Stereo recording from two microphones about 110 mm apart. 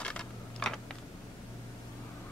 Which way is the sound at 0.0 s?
10° left (ahead or behind).